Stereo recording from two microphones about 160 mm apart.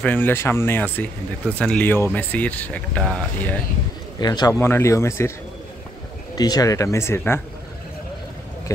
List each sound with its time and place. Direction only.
0.0 s speech: 10° left (ahead or behind)
4.2 s speech: 25° left (ahead or behind)
6.3 s speech: 25° left (ahead or behind)